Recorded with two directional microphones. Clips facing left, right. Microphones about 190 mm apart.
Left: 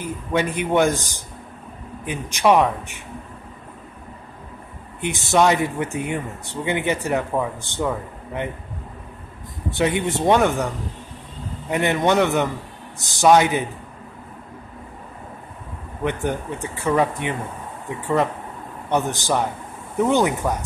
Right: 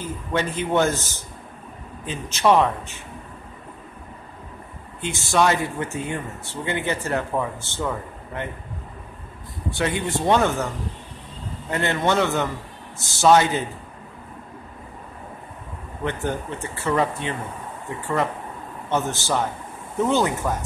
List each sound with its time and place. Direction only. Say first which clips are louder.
0.0 s speech: left 3 dB; 15° left (ahead or behind)
5.0 s speech: left 3 dB; 20° left (ahead or behind)
9.8 s speech: left 4 dB; 20° left (ahead or behind)
11.7 s speech: left 3 dB; 15° left (ahead or behind)
16.0 s speech: left 2 dB; 15° left (ahead or behind)
18.9 s speech: left 2 dB; 15° left (ahead or behind)